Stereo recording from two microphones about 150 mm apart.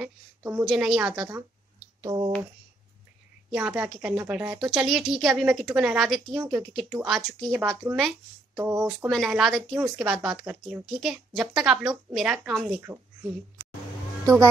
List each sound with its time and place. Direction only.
0.0 s a woman's voice: 15° right (ahead or behind)
2.0 s speech: 35° right (ahead or behind)
3.5 s a woman's voice: 10° right (ahead or behind)
6.3 s speech: 15° right (ahead or behind)
6.7 s a woman's voice: centre (ahead or behind)
7.8 s speech: 15° right (ahead or behind)
9.1 s a woman's voice: 5° right (ahead or behind)